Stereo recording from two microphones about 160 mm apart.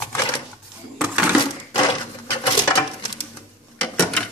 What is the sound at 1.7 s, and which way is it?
Sewing machine, 30° left (ahead or behind).